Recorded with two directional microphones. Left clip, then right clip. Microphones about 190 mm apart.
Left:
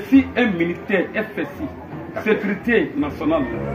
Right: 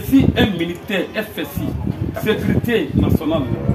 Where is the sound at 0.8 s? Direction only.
15° right (ahead or behind).